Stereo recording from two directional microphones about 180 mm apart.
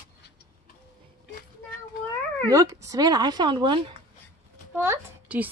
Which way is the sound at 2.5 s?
20° right (ahead or behind).